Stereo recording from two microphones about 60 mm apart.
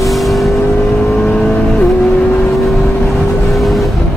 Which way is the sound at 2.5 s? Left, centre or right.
Centre.